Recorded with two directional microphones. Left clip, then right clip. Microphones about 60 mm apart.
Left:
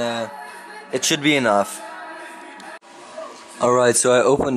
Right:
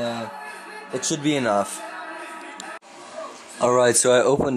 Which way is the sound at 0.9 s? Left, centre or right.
Left.